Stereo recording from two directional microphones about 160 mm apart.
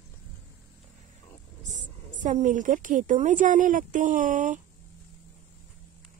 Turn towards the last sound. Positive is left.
turn(degrees=-55)  # may be behind; listen again after turning